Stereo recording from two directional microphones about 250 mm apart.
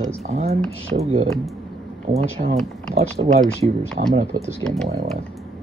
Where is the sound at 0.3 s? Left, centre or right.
Right.